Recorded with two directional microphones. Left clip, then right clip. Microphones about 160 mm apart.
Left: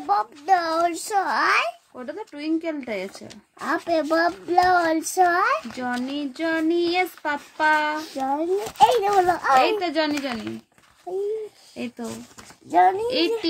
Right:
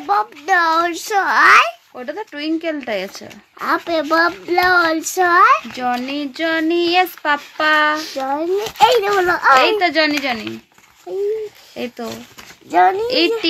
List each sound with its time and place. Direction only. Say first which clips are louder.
0.5 s a child's voice: right 5 dB; 15° left (ahead or behind)
2.0 s speech: right 7 dB; 20° right (ahead or behind)
3.6 s a child's voice: right 5 dB; 15° left (ahead or behind)
5.8 s speech: right 7 dB; 20° right (ahead or behind)
8.2 s a child's voice: right 5 dB; 10° left (ahead or behind)
9.6 s speech: right 6 dB; 20° right (ahead or behind)
11.1 s a child's voice: right 4 dB; 10° left (ahead or behind)
11.7 s speech: right 7 dB; 30° right (ahead or behind)
12.6 s a child's voice: right 4 dB; 5° left (ahead or behind)
13.0 s speech: right 6 dB; 30° right (ahead or behind)